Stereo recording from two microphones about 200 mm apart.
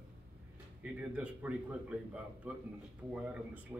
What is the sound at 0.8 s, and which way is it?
A man's voice, 5° right (ahead or behind).